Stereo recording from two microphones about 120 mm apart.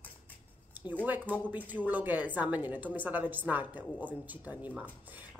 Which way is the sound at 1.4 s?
15° right (ahead or behind).